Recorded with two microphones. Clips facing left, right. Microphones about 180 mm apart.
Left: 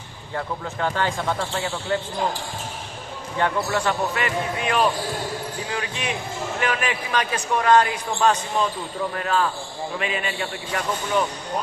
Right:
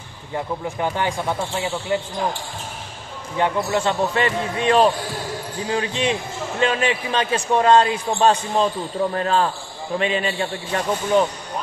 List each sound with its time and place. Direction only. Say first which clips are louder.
0.3 s speech: right 3 dB; 15° right (ahead or behind)
3.3 s speech: right 2 dB; 20° right (ahead or behind)